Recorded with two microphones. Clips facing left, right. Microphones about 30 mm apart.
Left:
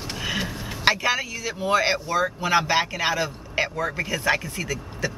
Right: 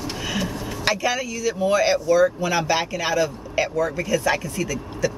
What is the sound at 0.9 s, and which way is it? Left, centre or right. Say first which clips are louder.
Speech: left 1 dB; left.